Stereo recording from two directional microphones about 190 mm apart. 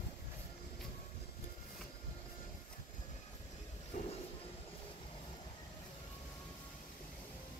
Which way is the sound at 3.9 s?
45° left (ahead or behind).